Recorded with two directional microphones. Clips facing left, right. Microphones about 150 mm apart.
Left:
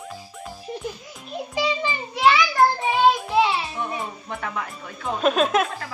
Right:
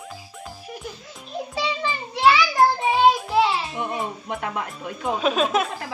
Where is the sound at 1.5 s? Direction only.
5° left (ahead or behind).